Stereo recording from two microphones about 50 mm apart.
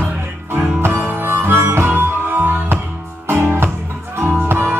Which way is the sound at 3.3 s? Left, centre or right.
Right.